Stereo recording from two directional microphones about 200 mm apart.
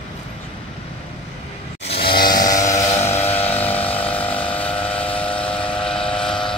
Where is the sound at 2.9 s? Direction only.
30° left (ahead or behind).